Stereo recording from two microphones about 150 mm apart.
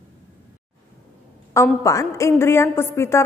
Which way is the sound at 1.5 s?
20° left (ahead or behind).